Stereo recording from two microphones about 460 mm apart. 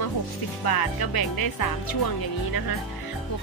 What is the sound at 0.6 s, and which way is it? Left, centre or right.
Speech, left.